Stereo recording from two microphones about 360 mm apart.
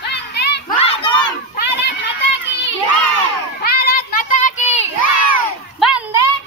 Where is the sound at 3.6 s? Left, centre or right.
Left.